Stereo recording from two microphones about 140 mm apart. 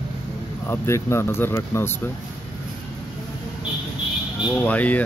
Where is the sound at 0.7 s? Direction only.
20° left (ahead or behind).